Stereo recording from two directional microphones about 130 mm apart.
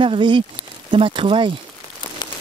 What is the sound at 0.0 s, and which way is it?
Speech, 40° right (ahead or behind).